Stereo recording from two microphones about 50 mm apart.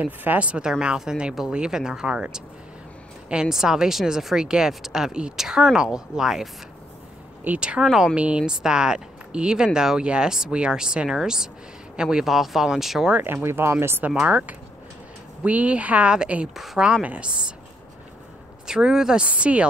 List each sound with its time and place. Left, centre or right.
0.0 s speech: right
0.5 s speech: centre
3.4 s speech: centre
7.5 s speech: right
8.1 s speech: right; by 13.1 s centre
13.2 s speech: right
14.2 s speech: right
16.5 s speech: centre
17.0 s speech: right
18.7 s speech: centre